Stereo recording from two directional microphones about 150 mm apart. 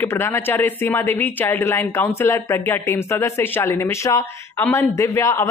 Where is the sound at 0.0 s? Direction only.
15° left (ahead or behind).